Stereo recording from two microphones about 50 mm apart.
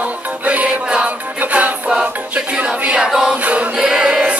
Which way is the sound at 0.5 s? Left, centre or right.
Right.